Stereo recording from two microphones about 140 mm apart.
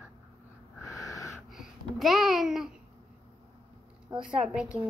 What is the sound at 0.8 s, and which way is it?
Owl, 20° left (ahead or behind).